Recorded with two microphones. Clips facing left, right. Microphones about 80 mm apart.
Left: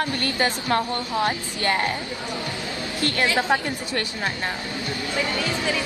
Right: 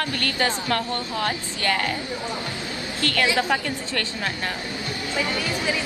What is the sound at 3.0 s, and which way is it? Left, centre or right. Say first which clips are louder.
Speech: even; left.